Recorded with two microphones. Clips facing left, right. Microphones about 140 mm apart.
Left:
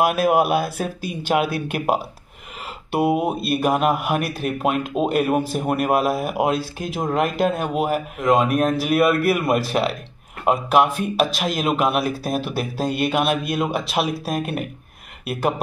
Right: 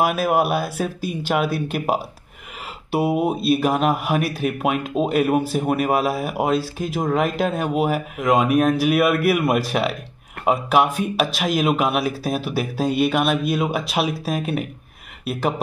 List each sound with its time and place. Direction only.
0.0 s a man's voice: centre (ahead or behind)
0.4 s speech: 55° left (ahead or behind)
1.3 s a man's voice: centre (ahead or behind)